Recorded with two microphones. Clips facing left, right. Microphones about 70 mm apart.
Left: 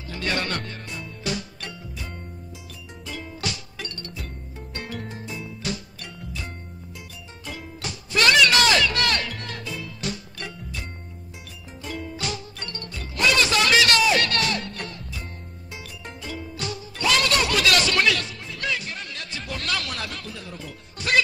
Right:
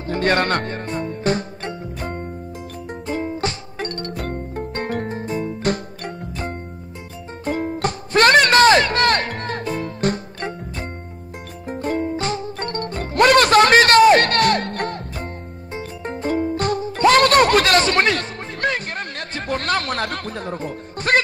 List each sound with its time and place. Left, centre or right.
0.0 s music: right
2.0 s music: right
11.6 s music: right
15.7 s music: right